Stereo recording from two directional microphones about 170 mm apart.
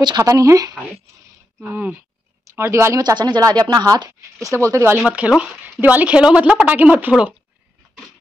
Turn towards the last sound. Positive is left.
turn(degrees=-5)  # may be behind; listen again after turning